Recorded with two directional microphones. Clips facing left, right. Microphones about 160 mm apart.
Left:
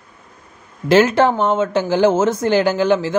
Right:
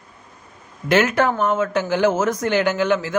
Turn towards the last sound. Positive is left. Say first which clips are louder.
# left 3 dB
turn(degrees=30)  # may be behind; listen again after turning